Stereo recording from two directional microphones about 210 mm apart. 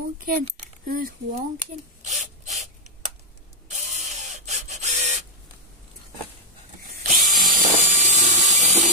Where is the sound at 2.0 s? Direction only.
35° right (ahead or behind).